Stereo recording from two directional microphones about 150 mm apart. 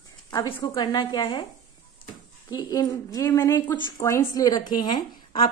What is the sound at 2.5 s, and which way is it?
A woman's voice, 25° left (ahead or behind).